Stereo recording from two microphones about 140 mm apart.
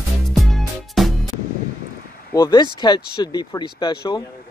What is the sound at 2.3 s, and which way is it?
Speech, 30° left (ahead or behind).